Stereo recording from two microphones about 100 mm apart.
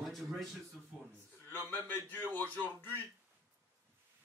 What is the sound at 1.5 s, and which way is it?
Speech, 20° left (ahead or behind).